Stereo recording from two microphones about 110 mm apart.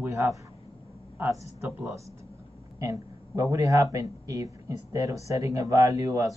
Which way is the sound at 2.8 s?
30° right (ahead or behind).